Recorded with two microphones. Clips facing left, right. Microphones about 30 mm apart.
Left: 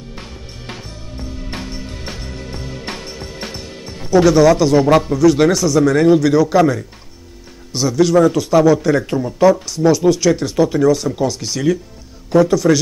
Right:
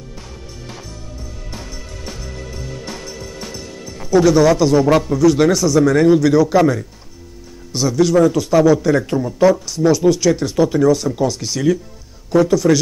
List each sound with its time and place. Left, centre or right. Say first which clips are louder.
0.7 s music: left 4 dB; left
4.3 s a man's voice: left 2 dB; centre
7.7 s a man's voice: left 1 dB; centre